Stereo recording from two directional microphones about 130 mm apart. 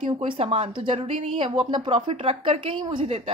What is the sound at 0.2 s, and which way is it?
A woman's voice, 45° right (ahead or behind).